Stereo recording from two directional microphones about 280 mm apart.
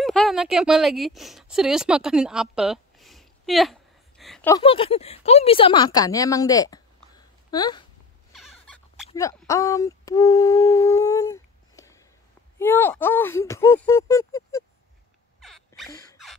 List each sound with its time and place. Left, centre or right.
0.0 s speech: centre
4.6 s speech: centre
8.4 s fowl: centre
9.1 s speech: centre
15.4 s a sound: centre